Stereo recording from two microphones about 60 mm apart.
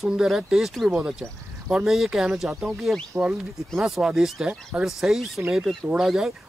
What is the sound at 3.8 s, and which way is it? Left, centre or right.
Speech, centre.